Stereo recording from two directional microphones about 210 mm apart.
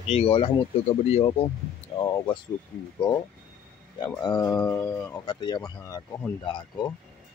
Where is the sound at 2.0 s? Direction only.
20° left (ahead or behind).